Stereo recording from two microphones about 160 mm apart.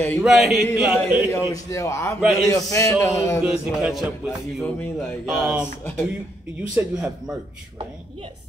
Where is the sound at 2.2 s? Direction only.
Centre (ahead or behind).